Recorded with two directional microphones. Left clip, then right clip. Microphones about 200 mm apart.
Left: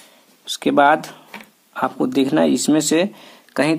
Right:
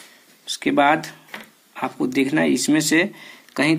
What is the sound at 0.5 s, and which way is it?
Speech, 35° left (ahead or behind).